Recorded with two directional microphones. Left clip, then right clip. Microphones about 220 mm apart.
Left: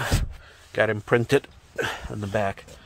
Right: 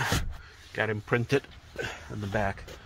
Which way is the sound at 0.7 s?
30° left (ahead or behind).